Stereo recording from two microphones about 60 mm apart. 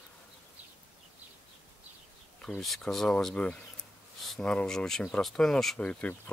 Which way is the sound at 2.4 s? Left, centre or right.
Centre.